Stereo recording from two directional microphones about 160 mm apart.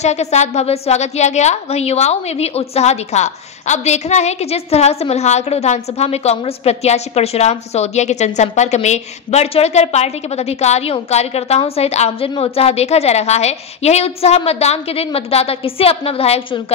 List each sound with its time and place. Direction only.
0.0 s a woman's voice: 45° left (ahead or behind)